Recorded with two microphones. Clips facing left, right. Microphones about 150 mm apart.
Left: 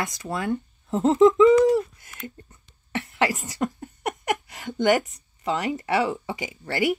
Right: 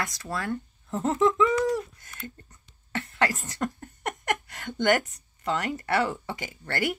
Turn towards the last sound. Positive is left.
turn(degrees=10)  # may be behind; listen again after turning